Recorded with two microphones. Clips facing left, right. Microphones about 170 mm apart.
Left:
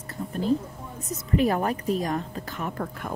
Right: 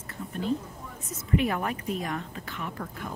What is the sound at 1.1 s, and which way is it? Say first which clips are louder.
A woman's voice: left 3 dB; 35° left (ahead or behind).